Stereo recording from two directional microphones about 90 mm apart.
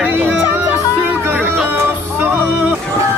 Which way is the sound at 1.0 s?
25° right (ahead or behind).